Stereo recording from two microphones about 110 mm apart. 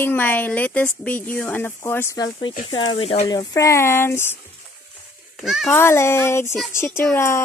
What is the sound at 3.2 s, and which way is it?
Speech, 35° left (ahead or behind).